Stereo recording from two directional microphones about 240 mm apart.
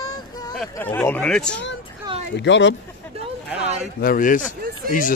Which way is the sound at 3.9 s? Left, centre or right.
Left.